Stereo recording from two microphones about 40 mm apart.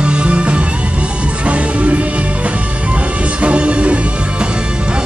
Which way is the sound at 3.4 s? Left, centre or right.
Right.